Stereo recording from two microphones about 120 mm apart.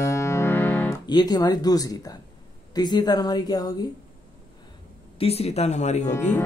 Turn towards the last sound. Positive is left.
turn(degrees=75)  # may be behind; listen again after turning